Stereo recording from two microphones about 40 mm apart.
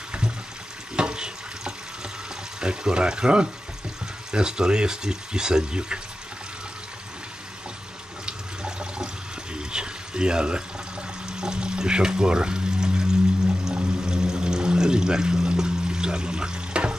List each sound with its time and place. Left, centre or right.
0.9 s water: right
2.6 s speech: right
8.3 s toilet flush: right
11.2 s water: centre
13.7 s pour: centre